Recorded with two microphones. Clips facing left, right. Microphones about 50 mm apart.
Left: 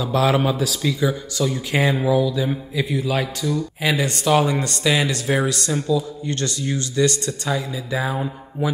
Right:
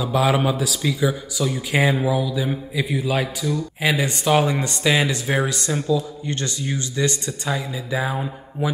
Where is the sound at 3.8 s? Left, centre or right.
Centre.